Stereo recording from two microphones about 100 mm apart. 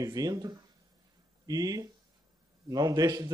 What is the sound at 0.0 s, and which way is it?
Speech, 40° right (ahead or behind).